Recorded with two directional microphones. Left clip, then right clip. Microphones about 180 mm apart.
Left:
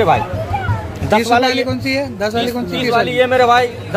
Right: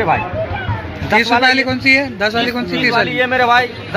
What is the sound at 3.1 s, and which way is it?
Speech, 60° left (ahead or behind).